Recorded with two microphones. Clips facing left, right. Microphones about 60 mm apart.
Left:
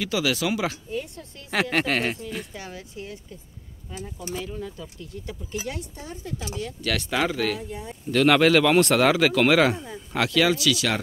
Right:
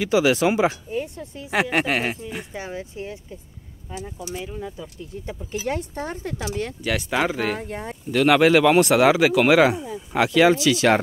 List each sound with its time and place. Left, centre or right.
0.0 s speech: right
5.7 s speech: right
6.8 s speech: centre
7.5 s speech: right
8.1 s speech: centre; by 11.0 s right